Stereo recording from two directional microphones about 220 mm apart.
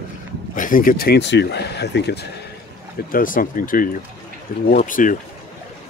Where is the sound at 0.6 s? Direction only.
40° left (ahead or behind).